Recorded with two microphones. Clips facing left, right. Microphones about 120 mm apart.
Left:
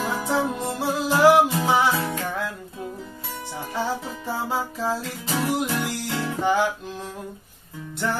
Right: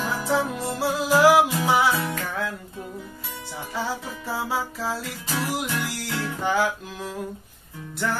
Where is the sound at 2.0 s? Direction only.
25° left (ahead or behind).